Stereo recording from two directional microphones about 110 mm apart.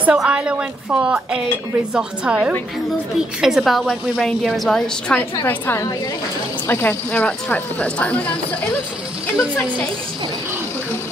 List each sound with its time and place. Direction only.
0.0 s a woman's voice: 10° right (ahead or behind); by 5.2 s 5° left (ahead or behind)
5.4 s a woman's voice: 20° left (ahead or behind)